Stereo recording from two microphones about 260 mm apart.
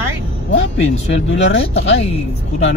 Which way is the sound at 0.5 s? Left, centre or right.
Left.